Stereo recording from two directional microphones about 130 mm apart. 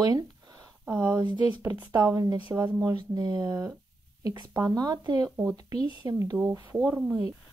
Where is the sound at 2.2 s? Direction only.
35° right (ahead or behind).